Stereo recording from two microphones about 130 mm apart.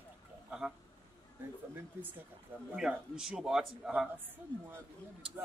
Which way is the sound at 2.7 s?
5° right (ahead or behind).